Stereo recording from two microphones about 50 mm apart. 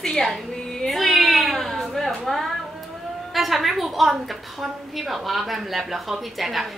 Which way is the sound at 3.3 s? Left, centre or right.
Centre.